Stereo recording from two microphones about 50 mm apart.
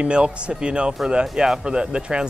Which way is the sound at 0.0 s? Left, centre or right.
Right.